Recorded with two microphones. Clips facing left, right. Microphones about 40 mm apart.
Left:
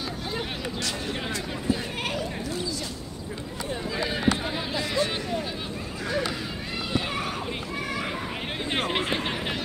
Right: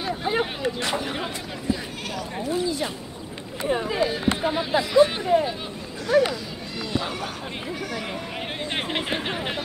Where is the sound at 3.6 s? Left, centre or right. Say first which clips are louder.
Right 7 dB; right.